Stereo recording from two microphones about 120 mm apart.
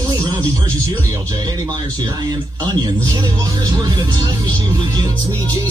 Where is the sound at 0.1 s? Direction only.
30° right (ahead or behind).